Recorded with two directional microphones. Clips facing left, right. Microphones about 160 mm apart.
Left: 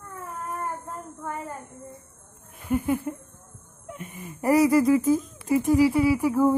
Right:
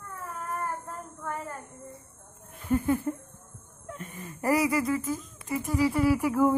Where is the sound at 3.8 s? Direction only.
15° left (ahead or behind).